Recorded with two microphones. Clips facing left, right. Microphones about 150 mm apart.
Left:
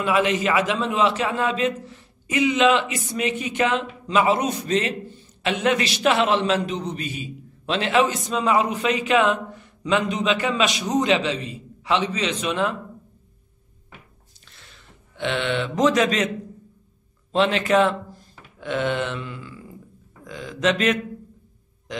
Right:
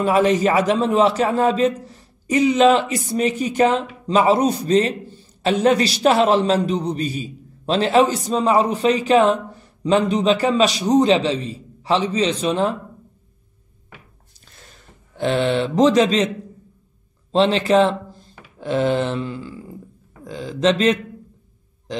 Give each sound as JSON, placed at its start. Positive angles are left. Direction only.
{"t": 0.0, "sound": "a man's voice", "side_deg": -40}
{"t": 14.5, "sound": "a sound", "side_deg": -40}
{"t": 17.3, "sound": "a man's voice", "side_deg": -30}